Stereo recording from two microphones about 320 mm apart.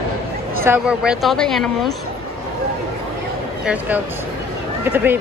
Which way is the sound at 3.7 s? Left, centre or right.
Centre.